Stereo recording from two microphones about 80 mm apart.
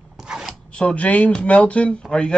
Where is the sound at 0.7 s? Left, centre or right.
Centre.